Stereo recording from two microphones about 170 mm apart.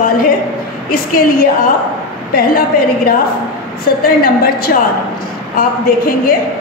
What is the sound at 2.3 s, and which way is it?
Speech, 60° left (ahead or behind).